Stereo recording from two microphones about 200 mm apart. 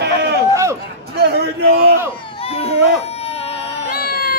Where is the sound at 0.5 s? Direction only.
15° right (ahead or behind).